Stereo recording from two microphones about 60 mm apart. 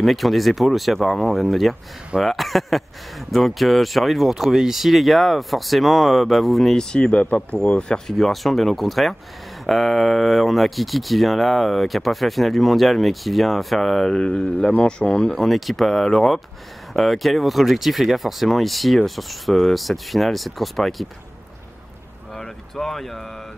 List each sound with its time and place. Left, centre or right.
0.0 s speech: centre
7.0 s speech: left
8.1 s speech: centre
22.3 s a sound: centre